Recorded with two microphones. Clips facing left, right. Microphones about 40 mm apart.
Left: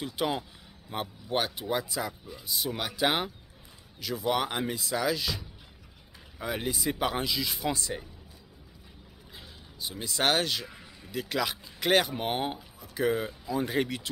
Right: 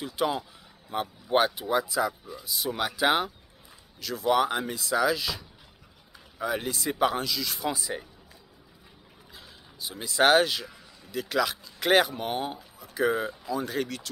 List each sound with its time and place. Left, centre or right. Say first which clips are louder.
0.0 s speech: right 2 dB; centre
7.2 s speech: even; centre
7.5 s speech: right 1 dB; centre
9.3 s speech: even; centre
12.2 s speech: even; left
12.9 s speech: right 2 dB; centre
13.5 s speech: left 3 dB; centre